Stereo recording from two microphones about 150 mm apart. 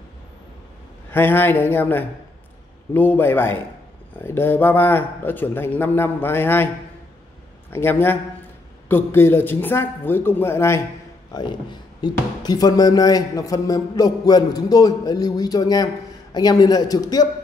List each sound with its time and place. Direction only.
1.1 s a man's voice: 15° left (ahead or behind)
7.7 s a man's voice: 15° left (ahead or behind)
11.3 s speech: 30° left (ahead or behind)